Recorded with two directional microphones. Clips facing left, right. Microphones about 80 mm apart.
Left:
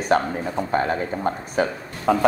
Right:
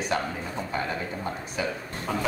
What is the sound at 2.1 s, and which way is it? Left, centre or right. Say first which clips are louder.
Speech: left 11 dB; left.